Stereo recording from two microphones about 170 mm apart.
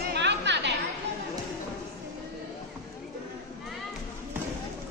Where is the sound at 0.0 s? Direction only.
90° right.